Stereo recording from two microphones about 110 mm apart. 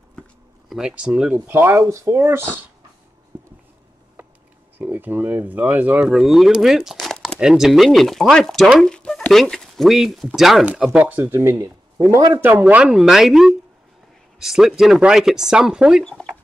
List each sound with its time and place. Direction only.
0.7 s speech: 5° right (ahead or behind)
1.3 s speech: 20° right (ahead or behind)
3.3 s a sound: 20° right (ahead or behind)
4.7 s speech: 15° right (ahead or behind)
16.0 s speech: 5° left (ahead or behind)